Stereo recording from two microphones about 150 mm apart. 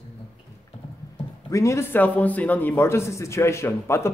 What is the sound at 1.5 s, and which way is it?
A man's voice, 20° left (ahead or behind).